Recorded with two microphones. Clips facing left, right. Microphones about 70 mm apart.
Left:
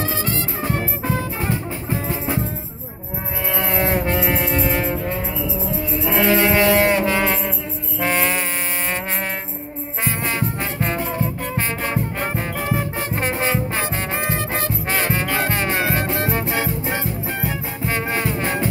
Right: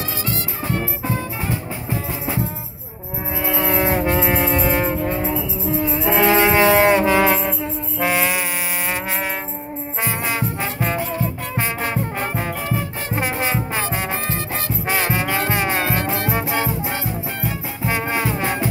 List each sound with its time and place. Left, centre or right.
1.0 s music: centre
3.4 s music: centre
4.8 s music: centre
6.0 s music: centre
8.0 s music: centre
10.0 s music: centre
14.2 s music: left
14.9 s music: centre
17.8 s music: centre